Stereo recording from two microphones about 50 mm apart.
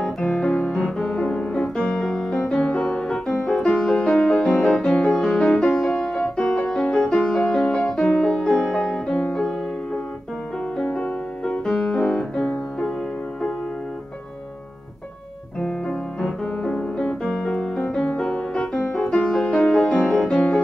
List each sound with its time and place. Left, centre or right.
0.2 s music: left
0.7 s music: centre
10.8 s music: left
11.6 s music: centre
15.6 s music: left